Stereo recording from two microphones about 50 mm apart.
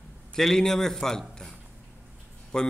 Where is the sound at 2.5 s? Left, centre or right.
Centre.